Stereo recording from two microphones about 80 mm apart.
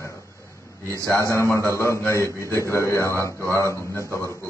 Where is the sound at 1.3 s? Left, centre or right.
Left.